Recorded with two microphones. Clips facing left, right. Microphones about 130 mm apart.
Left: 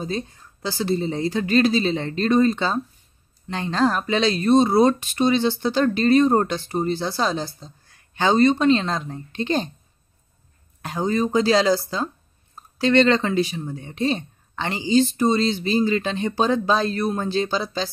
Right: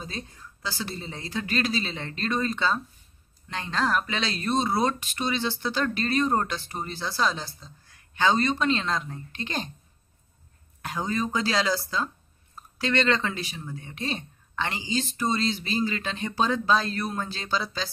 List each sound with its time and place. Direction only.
0.8 s speech: 25° left (ahead or behind)
10.8 s speech: 30° left (ahead or behind)